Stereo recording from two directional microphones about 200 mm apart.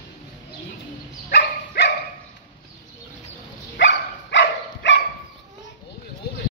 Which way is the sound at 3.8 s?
65° left (ahead or behind).